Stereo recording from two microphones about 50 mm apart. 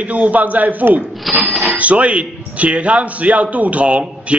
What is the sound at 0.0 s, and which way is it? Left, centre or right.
Speech, right.